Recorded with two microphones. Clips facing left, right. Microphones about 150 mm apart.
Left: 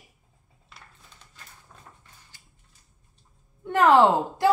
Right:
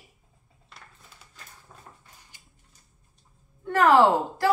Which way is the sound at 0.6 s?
Centre (ahead or behind).